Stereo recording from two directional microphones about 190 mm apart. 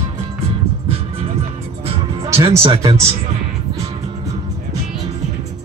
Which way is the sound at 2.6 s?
30° right (ahead or behind).